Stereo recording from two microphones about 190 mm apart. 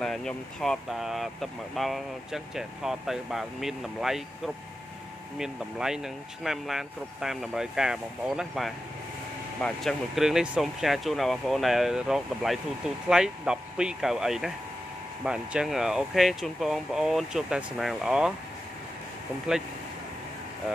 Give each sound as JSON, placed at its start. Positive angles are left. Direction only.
{"t": 0.0, "sound": "speech", "side_deg": 5}
{"t": 5.4, "sound": "speech", "side_deg": -5}